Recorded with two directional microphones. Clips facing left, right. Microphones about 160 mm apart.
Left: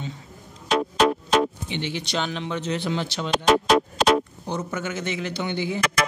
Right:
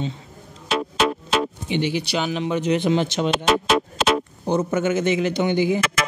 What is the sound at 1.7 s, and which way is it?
Speech, 10° right (ahead or behind).